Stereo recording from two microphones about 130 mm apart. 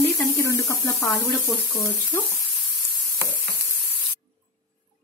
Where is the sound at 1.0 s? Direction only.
10° left (ahead or behind).